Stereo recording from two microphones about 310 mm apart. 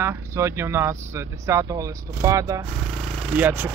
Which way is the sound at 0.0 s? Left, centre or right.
Centre.